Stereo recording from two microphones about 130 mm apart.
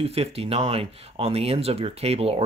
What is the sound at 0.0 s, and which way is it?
Speech, 50° right (ahead or behind).